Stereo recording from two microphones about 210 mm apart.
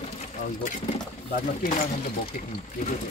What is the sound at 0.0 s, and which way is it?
Speech, 30° left (ahead or behind).